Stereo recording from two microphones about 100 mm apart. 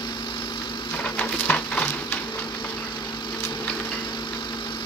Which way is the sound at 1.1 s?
15° left (ahead or behind).